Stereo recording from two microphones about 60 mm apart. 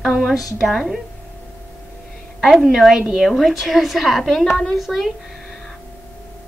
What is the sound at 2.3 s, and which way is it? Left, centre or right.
A woman's voice, centre.